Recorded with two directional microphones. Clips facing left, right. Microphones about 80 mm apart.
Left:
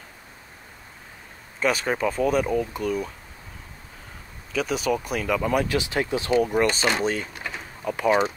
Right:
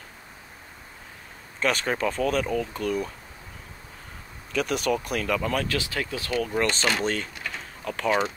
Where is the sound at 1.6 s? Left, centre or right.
Centre.